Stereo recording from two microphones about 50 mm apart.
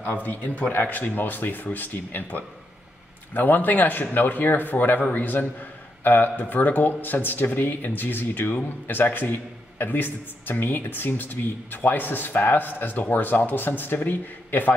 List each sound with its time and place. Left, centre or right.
0.0 s a man's voice: left